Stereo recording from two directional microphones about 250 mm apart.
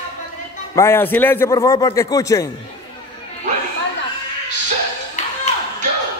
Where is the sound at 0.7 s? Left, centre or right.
Centre.